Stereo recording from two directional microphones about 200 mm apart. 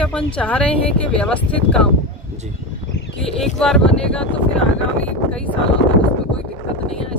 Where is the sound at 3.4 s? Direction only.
Centre (ahead or behind).